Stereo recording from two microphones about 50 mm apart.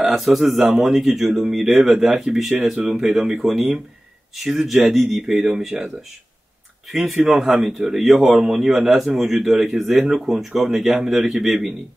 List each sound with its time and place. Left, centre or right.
0.1 s a man's voice: centre
6.9 s a man's voice: centre